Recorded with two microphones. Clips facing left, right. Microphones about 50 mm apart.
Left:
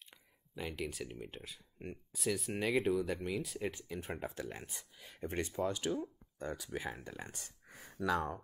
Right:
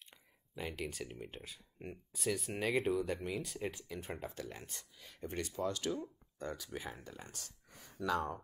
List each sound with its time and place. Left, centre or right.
0.1 s speech: centre
5.2 s speech: left
5.6 s speech: centre
7.0 s speech: left